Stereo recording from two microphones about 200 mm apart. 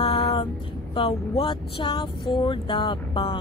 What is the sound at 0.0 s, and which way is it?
Music, 30° left (ahead or behind).